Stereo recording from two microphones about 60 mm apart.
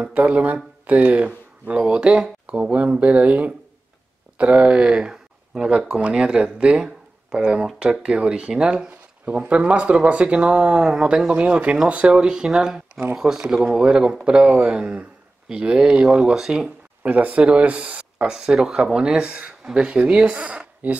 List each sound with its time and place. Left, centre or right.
0.0 s speech: right
9.2 s speech: right
18.2 s speech: centre; by 21.0 s right